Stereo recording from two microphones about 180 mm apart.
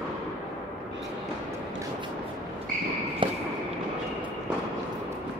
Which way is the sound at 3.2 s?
30° right (ahead or behind).